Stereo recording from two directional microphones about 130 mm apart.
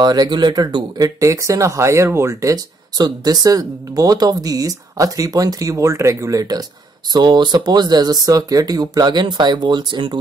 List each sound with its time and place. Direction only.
0.0 s speech: 30° right (ahead or behind)